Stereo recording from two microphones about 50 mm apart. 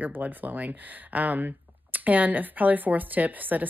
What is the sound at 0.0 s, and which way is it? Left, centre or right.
Speech, right.